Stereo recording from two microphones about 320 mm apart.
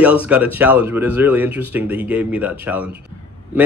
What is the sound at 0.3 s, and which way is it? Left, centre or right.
Speech, centre.